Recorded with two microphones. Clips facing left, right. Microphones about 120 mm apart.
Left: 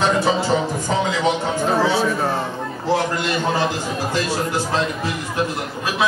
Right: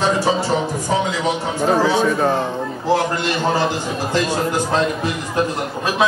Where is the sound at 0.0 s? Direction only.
Centre (ahead or behind).